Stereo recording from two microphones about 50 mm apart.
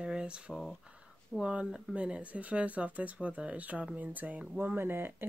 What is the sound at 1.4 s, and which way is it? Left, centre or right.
Speech, right.